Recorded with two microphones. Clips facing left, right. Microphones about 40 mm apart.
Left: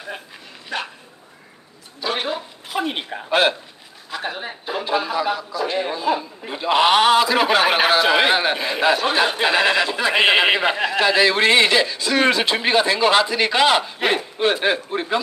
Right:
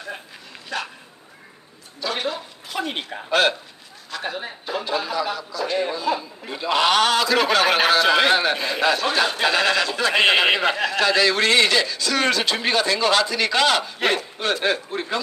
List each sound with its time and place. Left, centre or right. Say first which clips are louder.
0.7 s a man's voice: left 1 dB; left
2.0 s speech: left 2 dB; left
2.7 s a man's voice: left 3 dB; centre